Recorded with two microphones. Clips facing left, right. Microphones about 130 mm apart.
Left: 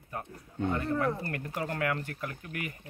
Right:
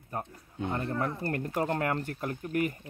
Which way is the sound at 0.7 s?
35° right (ahead or behind).